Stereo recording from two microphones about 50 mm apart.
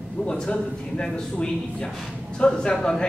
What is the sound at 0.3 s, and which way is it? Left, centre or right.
A man's voice, centre.